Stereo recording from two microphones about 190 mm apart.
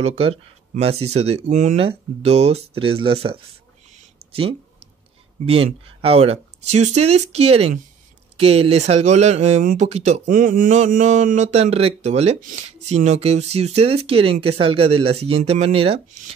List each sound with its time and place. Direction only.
0.0 s speech: 30° right (ahead or behind)